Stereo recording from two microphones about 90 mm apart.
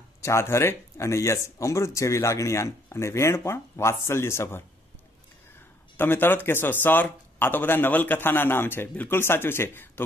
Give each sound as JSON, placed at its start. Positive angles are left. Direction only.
{"t": 0.2, "sound": "speech", "side_deg": 30}
{"t": 5.9, "sound": "speech", "side_deg": 25}